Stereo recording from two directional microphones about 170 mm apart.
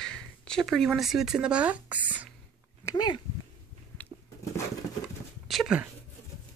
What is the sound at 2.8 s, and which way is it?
Speech, 25° left (ahead or behind).